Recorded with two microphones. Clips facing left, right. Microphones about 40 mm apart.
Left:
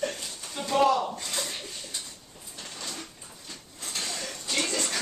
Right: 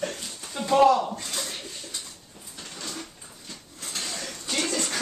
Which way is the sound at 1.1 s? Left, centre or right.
Centre.